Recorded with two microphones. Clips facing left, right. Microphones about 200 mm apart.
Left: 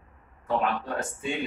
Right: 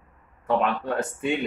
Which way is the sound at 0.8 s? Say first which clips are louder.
Right 5 dB; 60° right (ahead or behind).